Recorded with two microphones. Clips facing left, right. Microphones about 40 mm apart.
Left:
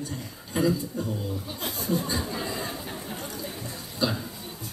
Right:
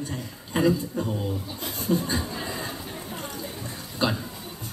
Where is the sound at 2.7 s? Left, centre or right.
Centre.